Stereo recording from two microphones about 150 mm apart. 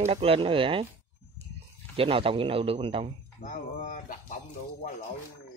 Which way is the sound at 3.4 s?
60° left (ahead or behind).